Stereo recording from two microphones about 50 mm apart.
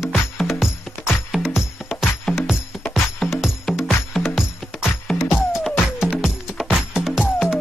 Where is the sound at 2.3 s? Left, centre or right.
Centre.